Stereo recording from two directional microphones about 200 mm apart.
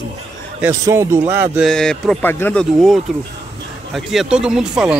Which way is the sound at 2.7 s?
Centre (ahead or behind).